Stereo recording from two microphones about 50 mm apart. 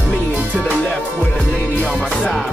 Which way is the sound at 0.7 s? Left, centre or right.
Left.